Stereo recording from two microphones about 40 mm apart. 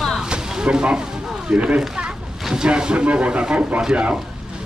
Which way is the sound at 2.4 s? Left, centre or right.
Centre.